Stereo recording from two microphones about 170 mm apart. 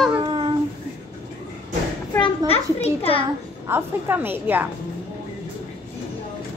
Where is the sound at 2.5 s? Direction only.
35° left (ahead or behind).